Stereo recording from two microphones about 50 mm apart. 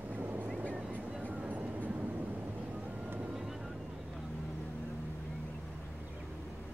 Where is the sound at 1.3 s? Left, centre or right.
Right.